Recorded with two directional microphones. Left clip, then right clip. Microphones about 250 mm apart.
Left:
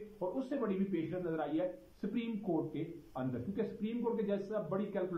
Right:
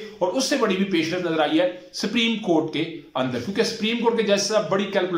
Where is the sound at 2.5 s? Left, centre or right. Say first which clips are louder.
Right 14 dB; right.